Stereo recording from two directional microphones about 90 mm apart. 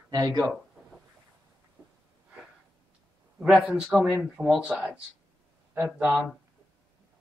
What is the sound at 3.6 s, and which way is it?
Speech, 10° right (ahead or behind).